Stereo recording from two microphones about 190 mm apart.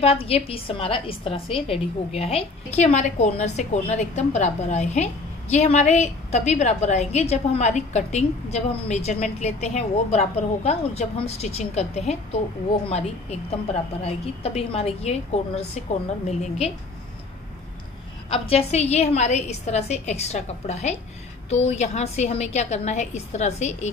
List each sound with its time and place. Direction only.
0.0 s a woman's voice: 30° left (ahead or behind)
18.5 s a woman's voice: 35° left (ahead or behind)